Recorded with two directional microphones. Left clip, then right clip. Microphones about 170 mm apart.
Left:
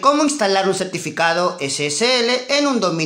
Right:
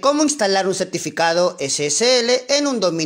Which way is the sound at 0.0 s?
35° right (ahead or behind).